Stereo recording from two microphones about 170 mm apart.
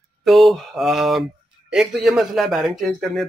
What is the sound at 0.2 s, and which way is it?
Mantra, centre (ahead or behind).